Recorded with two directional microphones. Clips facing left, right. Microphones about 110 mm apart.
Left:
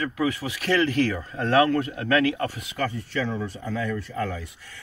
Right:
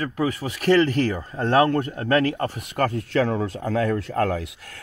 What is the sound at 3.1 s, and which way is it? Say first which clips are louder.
Speech: right 6 dB; 80° right.